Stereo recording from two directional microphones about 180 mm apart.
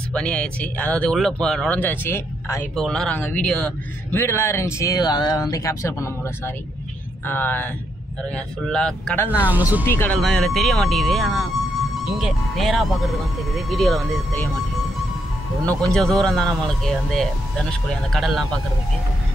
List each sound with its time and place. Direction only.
0.1 s speech: 5° left (ahead or behind)
2.7 s speech: 5° left (ahead or behind)
9.5 s speech: 10° right (ahead or behind)
9.8 s speech: 10° left (ahead or behind)
15.9 s speech: 5° left (ahead or behind)